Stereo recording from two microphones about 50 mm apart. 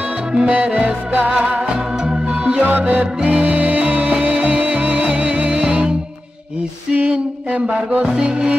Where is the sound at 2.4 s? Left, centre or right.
Right.